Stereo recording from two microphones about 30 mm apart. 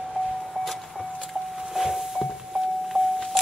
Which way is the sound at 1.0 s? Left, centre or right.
Right.